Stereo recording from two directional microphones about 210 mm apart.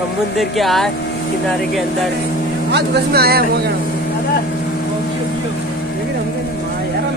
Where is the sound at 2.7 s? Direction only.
50° right (ahead or behind).